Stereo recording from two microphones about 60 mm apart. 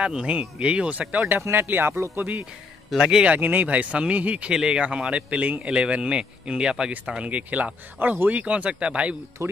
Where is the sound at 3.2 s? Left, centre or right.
Right.